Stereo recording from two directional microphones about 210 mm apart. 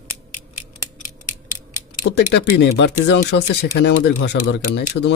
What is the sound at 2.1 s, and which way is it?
Speech, 55° left (ahead or behind).